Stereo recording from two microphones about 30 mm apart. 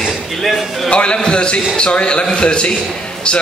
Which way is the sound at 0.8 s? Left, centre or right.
Left.